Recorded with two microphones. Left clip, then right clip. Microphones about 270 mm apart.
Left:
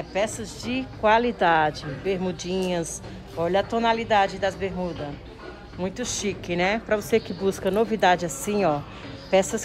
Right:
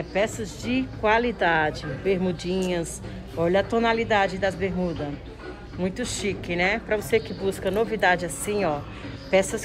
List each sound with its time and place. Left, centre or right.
0.1 s speech: centre
7.1 s speech: left
8.5 s speech: centre